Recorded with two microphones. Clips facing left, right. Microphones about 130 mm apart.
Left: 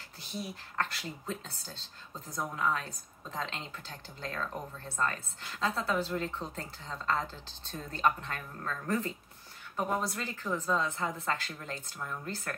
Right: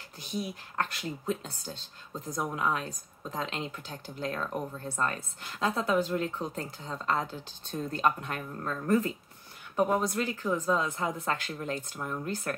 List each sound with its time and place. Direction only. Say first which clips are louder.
0.3 s speech: right 5 dB; 15° right (ahead or behind)